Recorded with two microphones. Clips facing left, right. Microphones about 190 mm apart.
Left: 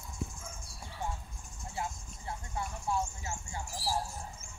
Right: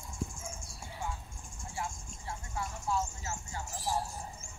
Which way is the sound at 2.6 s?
20° left (ahead or behind).